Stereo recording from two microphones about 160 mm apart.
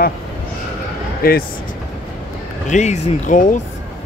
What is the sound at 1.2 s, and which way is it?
Speech, 65° left (ahead or behind).